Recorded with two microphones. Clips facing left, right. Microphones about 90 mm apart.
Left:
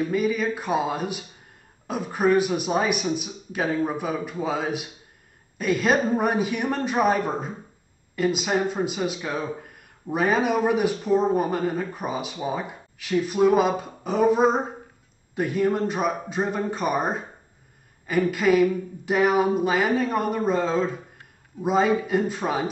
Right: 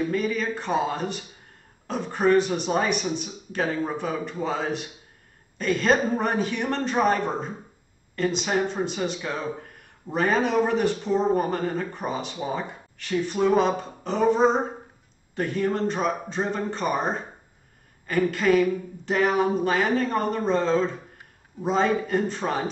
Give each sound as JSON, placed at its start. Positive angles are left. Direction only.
{"t": 0.1, "sound": "speech", "side_deg": 5}
{"t": 18.3, "sound": "speech", "side_deg": 5}